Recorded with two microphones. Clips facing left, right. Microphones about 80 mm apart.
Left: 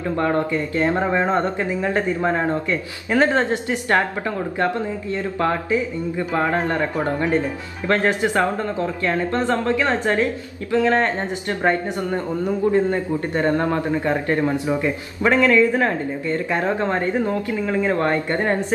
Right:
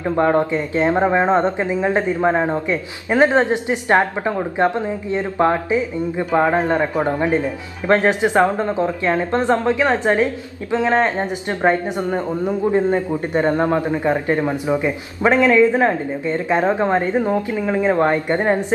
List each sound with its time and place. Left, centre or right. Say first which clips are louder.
0.0 s speech: right 4 dB; right